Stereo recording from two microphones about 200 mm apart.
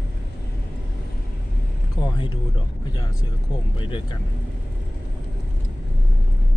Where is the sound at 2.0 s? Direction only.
25° left (ahead or behind).